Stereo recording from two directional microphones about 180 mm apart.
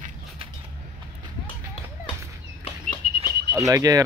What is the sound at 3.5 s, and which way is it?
Speech, 20° right (ahead or behind).